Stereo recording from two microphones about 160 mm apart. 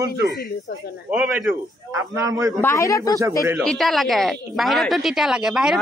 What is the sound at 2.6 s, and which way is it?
Speech, 20° left (ahead or behind).